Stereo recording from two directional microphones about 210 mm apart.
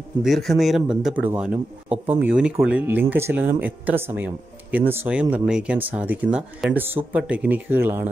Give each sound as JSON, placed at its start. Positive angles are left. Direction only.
{"t": 0.2, "sound": "speech", "side_deg": 0}